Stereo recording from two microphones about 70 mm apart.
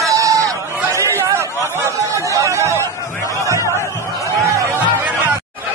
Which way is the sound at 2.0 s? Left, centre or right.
Right.